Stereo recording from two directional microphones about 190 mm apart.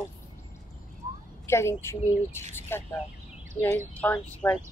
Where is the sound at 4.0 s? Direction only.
10° left (ahead or behind).